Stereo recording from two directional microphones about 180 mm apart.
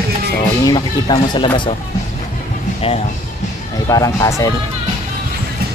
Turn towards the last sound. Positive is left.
turn(degrees=20)  # may be behind; listen again after turning